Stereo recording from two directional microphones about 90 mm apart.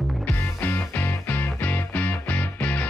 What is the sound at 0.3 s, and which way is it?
Music, 25° left (ahead or behind).